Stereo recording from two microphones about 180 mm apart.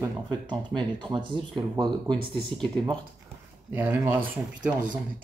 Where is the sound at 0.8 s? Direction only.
25° right (ahead or behind).